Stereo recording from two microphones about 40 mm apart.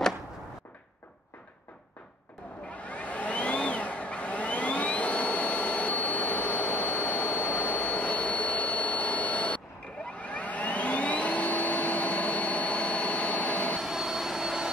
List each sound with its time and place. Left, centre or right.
2.7 s vehicle: left
10.1 s vacuum cleaner: left
13.7 s vacuum cleaner: centre